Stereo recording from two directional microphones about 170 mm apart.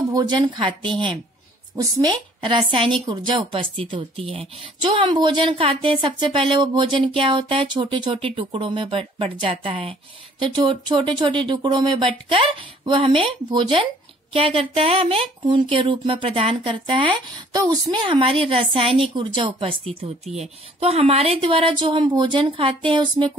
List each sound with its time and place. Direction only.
0.1 s a woman's voice: 25° right (ahead or behind)